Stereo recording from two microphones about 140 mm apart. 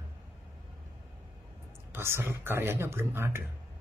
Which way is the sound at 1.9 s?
15° right (ahead or behind).